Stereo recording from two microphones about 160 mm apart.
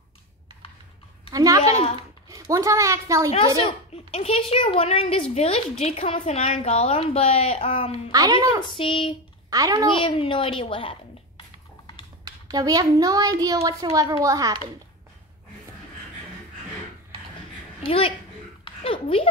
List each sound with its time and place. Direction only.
1.3 s a woman's voice: 20° right (ahead or behind)
1.6 s a woman's voice: 40° left (ahead or behind)
2.2 s a woman's voice: 20° right (ahead or behind)
3.3 s a woman's voice: 35° left (ahead or behind)
8.1 s a child's voice: 20° right (ahead or behind)
8.6 s a woman's voice: 30° left (ahead or behind)
9.5 s a child's voice: 20° right (ahead or behind)
9.9 s a child's voice: 35° left (ahead or behind)
12.4 s a child's voice: 25° right (ahead or behind)
17.8 s a woman's voice: 35° left (ahead or behind)
18.6 s a sound: 35° left (ahead or behind)